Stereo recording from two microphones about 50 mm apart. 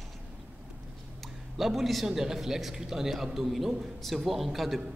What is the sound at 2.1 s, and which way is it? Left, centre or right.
A man's voice, centre.